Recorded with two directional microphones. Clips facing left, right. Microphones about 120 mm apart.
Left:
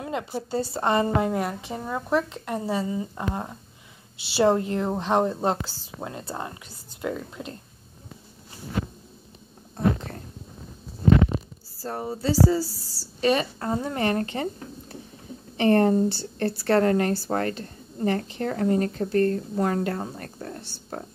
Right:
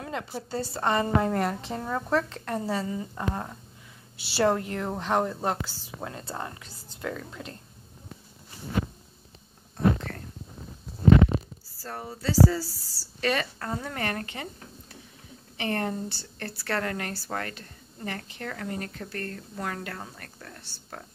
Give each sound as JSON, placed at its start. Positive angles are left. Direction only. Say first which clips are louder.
{"t": 0.0, "sound": "speech", "louder": "left 4 dB", "side_deg": 15}
{"t": 1.3, "sound": "a woman's voice", "louder": "even", "side_deg": 5}
{"t": 11.8, "sound": "a woman's voice", "louder": "left 5 dB", "side_deg": 20}